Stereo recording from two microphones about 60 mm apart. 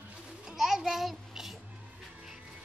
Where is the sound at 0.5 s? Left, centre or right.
Centre.